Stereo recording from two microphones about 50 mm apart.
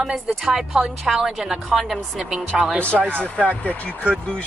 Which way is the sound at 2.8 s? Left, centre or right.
Left.